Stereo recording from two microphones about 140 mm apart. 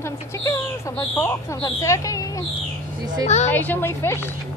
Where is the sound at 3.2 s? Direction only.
55° left (ahead or behind).